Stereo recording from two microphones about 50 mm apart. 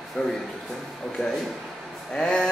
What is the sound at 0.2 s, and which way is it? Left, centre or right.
Speech, centre.